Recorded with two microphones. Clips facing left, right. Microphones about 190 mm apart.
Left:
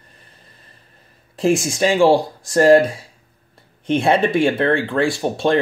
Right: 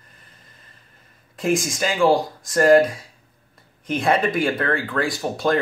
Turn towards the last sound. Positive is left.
turn(degrees=25)  # may be behind; listen again after turning